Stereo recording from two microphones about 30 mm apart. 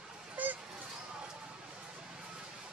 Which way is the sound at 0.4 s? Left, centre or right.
Right.